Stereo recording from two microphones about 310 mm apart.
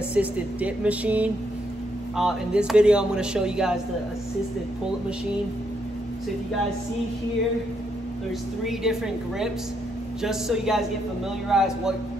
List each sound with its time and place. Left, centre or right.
0.1 s a man's voice: centre
8.6 s a man's voice: centre